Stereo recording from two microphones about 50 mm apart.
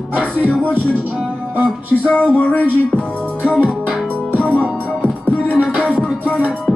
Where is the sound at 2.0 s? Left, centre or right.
Centre.